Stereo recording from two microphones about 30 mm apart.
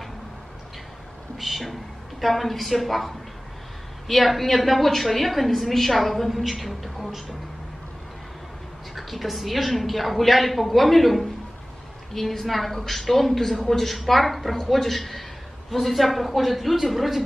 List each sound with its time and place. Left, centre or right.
1.4 s a woman's voice: centre
8.9 s a woman's voice: centre